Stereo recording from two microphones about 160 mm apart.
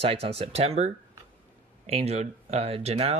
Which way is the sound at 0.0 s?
35° right (ahead or behind).